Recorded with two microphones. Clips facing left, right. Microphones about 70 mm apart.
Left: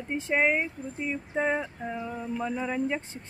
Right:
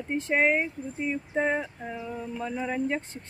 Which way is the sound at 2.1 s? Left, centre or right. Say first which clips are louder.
Left 1 dB; centre.